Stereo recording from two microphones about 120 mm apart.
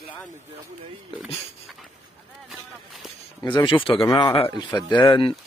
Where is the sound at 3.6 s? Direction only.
50° left (ahead or behind).